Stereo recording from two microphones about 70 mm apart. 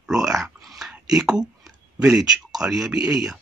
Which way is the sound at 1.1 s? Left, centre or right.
Centre.